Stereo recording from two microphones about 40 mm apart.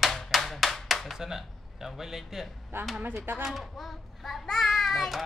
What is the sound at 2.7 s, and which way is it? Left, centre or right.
Speech, right.